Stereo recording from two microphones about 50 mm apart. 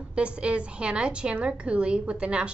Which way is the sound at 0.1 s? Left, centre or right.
Right.